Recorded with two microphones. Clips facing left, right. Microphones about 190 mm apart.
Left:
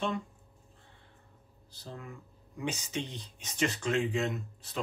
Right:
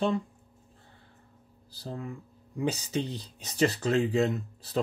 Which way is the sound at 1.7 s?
35° right (ahead or behind).